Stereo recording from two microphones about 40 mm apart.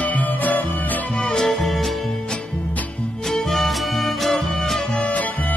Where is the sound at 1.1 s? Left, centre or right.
Centre.